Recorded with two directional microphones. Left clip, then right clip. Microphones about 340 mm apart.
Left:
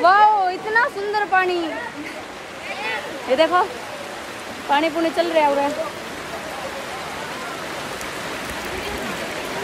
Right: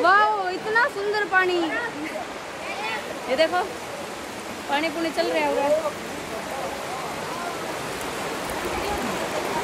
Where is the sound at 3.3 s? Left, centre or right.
Left.